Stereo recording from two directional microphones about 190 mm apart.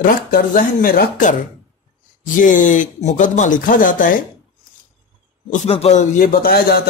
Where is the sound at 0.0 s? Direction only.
50° left (ahead or behind).